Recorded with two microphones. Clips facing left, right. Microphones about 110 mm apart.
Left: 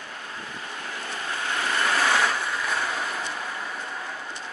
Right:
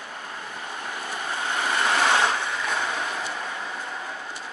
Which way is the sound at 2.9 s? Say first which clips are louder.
Right 1 dB; centre (ahead or behind).